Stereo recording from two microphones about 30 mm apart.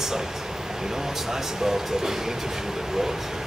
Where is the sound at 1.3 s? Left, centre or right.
Centre.